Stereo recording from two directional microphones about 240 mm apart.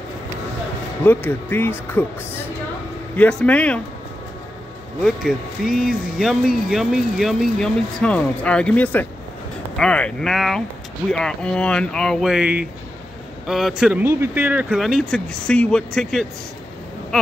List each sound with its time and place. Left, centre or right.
1.0 s speech: centre
3.2 s speech: centre
5.0 s speech: centre